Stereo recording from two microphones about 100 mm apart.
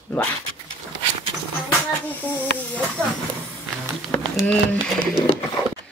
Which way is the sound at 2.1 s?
15° left (ahead or behind).